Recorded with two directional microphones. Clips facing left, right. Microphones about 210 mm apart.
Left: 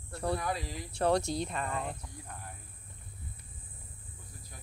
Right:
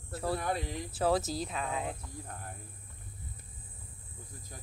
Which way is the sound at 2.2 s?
50° right (ahead or behind).